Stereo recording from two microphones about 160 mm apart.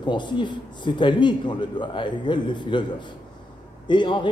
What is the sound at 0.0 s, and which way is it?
Speech, 30° left (ahead or behind).